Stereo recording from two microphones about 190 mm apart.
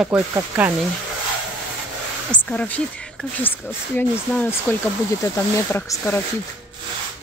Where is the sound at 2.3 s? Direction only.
5° left (ahead or behind).